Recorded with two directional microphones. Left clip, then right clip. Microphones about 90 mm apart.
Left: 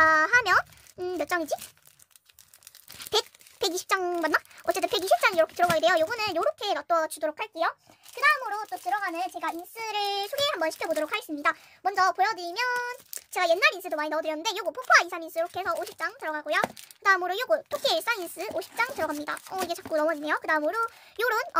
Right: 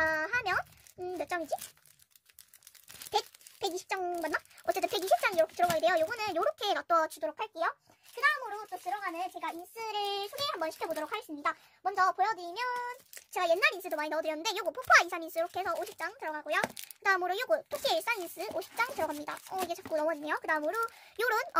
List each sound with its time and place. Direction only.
0.0 s a sound: 35° left (ahead or behind)
3.1 s a sound: 40° left (ahead or behind)
4.4 s speech: 25° left (ahead or behind)
6.4 s a child's voice: 5° right (ahead or behind)
7.1 s speech: 20° left (ahead or behind)
8.2 s a child's voice: 60° left (ahead or behind); by 12.9 s 40° left (ahead or behind)
13.3 s a child's voice: 15° left (ahead or behind)
19.9 s speech: 20° left (ahead or behind); by 21.5 s centre (ahead or behind)